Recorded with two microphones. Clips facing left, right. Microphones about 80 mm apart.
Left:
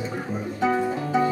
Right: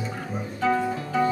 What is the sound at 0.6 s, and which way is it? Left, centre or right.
Music, centre.